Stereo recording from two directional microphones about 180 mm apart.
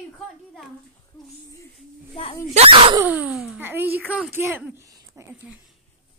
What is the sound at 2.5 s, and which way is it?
Speech, 30° right (ahead or behind).